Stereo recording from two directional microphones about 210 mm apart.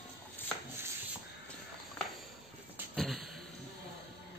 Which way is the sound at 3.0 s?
Centre (ahead or behind).